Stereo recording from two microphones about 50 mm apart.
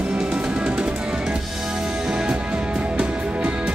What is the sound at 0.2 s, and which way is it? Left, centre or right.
Music, centre.